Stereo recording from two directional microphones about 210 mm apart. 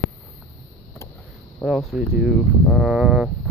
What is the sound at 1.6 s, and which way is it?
Speech, 5° right (ahead or behind).